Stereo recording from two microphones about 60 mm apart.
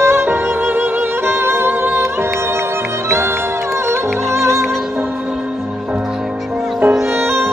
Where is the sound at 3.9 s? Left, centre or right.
Right.